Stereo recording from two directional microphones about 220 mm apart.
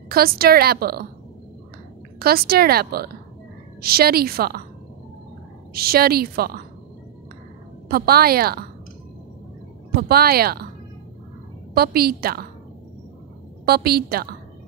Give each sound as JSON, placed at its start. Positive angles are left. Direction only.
{"t": 0.1, "sound": "a woman's voice", "side_deg": -45}
{"t": 2.1, "sound": "a woman's voice", "side_deg": -45}
{"t": 5.7, "sound": "a woman's voice", "side_deg": -45}
{"t": 7.9, "sound": "a woman's voice", "side_deg": -45}
{"t": 9.9, "sound": "a woman's voice", "side_deg": -45}
{"t": 11.7, "sound": "a woman's voice", "side_deg": -45}
{"t": 13.7, "sound": "a woman's voice", "side_deg": -45}